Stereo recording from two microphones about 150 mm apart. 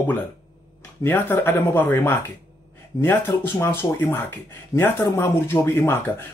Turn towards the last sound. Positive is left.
turn(degrees=15)  # may be behind; listen again after turning